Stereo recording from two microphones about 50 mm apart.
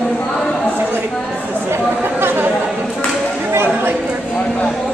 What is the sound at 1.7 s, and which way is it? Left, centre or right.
Chatter, right.